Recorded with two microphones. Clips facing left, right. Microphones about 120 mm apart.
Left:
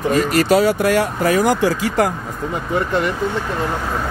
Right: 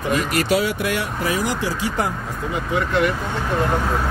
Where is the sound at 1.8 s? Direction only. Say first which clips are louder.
Left 3 dB; 90° left.